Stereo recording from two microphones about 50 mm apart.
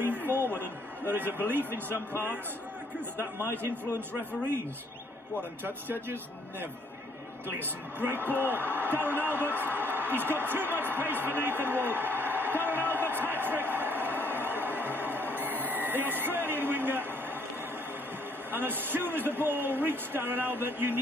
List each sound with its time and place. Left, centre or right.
0.0 s a sound: right
0.6 s a man's voice: right
3.2 s a man's voice: right
5.6 s speech: right
8.0 s a man's voice: right
18.5 s speech: right